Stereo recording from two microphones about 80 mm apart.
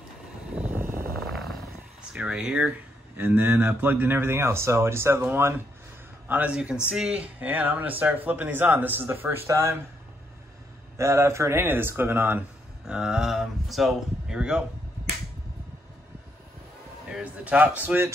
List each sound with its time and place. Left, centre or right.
0.7 s vehicle: right
1.1 s helicopter: centre
2.1 s speech: centre
3.3 s a man's voice: right
6.5 s speech: centre; by 9.8 s right
11.0 s speech: right
12.8 s speech: centre
17.1 s speech: centre